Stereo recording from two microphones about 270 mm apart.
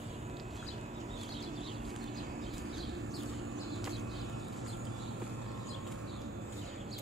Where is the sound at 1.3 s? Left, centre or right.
Centre.